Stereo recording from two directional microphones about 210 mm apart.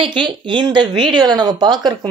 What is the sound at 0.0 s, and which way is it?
Speech, 25° right (ahead or behind).